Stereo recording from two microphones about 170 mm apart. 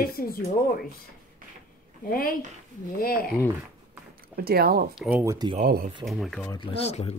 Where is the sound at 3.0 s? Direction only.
60° left (ahead or behind).